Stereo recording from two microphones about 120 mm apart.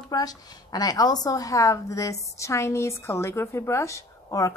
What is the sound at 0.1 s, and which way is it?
A woman's voice, 35° left (ahead or behind).